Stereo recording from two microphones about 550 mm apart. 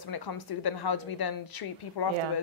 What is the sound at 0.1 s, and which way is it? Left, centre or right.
A woman's voice, left.